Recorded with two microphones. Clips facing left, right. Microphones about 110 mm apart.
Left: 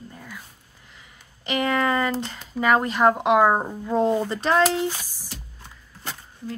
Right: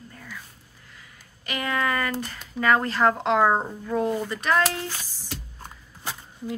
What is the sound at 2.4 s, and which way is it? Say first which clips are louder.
Speech: left 1 dB; 15° left (ahead or behind).